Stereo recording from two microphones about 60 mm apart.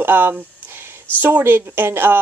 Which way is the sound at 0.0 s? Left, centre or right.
Right.